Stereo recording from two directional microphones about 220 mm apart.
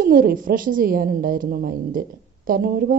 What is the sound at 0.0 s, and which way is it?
A woman's voice, 40° right (ahead or behind).